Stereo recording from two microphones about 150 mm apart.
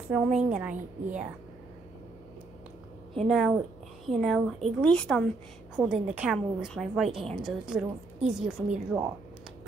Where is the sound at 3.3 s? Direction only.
Centre (ahead or behind).